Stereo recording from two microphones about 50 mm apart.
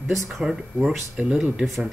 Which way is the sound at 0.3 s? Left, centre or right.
Centre.